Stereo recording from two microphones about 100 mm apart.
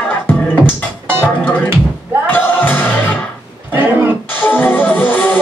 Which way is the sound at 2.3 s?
20° left (ahead or behind).